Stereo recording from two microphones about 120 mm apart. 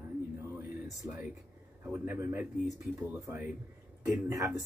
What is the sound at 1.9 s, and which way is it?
Speech, 15° right (ahead or behind).